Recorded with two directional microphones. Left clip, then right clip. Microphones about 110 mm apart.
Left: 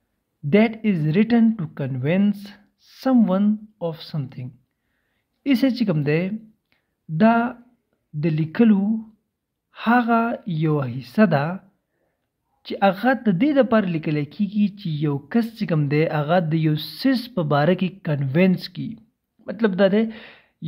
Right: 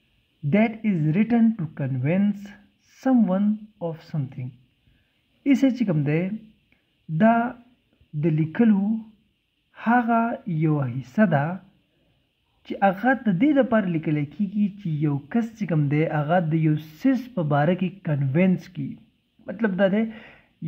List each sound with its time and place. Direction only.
0.5 s speech: 30° left (ahead or behind)
5.4 s speech: 30° left (ahead or behind)
12.6 s speech: 30° left (ahead or behind)